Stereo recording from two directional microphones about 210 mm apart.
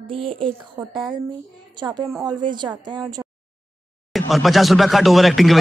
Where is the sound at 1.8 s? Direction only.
20° right (ahead or behind).